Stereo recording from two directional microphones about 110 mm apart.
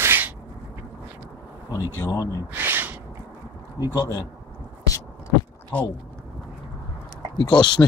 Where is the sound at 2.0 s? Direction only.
30° left (ahead or behind).